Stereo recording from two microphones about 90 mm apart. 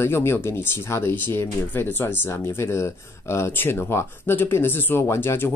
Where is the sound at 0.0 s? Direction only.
30° left (ahead or behind).